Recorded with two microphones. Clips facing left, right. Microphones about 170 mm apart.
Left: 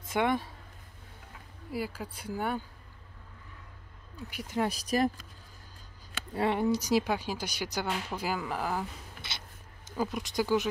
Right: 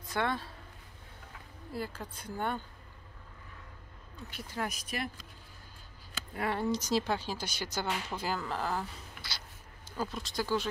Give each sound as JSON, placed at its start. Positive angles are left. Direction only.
{"t": 0.0, "sound": "speech", "side_deg": 20}
{"t": 1.7, "sound": "speech", "side_deg": 10}
{"t": 4.3, "sound": "speech", "side_deg": 15}
{"t": 4.6, "sound": "speech", "side_deg": 35}
{"t": 6.3, "sound": "speech", "side_deg": 20}
{"t": 9.8, "sound": "speech", "side_deg": 15}